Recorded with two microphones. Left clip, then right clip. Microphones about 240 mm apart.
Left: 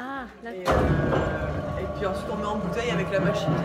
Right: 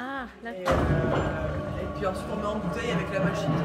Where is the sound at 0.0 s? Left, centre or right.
Centre.